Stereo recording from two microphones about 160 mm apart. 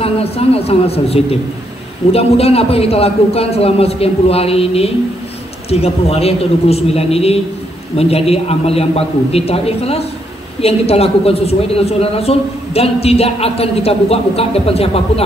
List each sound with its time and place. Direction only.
0.0 s a man's voice: 40° left (ahead or behind)